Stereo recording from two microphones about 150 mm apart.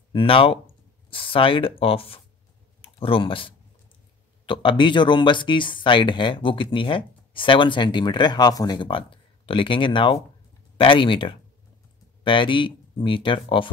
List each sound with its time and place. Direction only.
0.1 s speech: 35° left (ahead or behind)